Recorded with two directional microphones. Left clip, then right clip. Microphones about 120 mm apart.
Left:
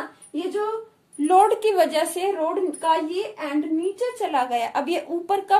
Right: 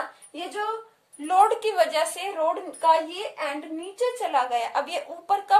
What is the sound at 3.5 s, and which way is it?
Speech, 20° left (ahead or behind).